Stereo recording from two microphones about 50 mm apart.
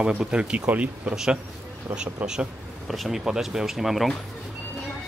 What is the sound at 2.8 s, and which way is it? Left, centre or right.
Speech, centre.